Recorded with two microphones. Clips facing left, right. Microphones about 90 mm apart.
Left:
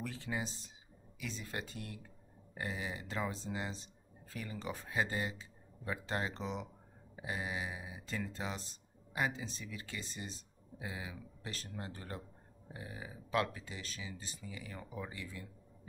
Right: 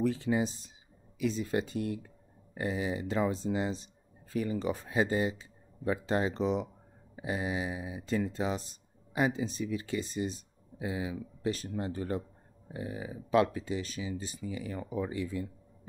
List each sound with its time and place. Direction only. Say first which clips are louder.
0.0 s speech: right 12 dB; 20° right (ahead or behind)